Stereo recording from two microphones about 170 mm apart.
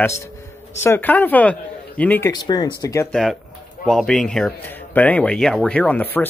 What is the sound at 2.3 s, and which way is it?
Speech, 25° left (ahead or behind).